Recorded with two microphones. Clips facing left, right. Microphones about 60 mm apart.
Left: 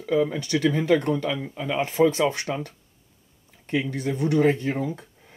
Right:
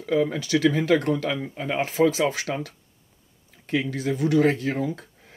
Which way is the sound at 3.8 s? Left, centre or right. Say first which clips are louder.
Right 1 dB; centre.